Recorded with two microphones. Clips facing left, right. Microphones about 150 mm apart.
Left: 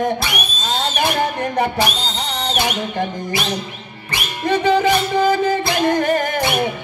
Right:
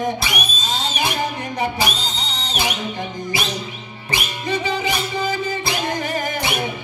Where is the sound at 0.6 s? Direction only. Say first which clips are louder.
Left 6 dB; 55° left (ahead or behind).